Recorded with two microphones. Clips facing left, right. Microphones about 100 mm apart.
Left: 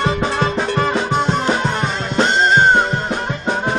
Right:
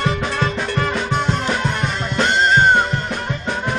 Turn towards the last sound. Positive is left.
turn(degrees=25)  # may be behind; listen again after turning